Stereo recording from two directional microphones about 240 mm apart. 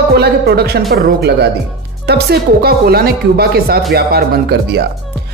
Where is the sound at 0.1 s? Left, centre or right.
Right.